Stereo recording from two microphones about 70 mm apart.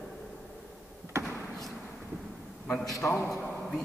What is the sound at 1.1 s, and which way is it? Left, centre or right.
Basketball bounce, right.